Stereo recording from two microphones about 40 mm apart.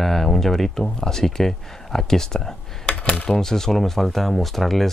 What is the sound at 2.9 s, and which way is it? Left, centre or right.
Coin, left.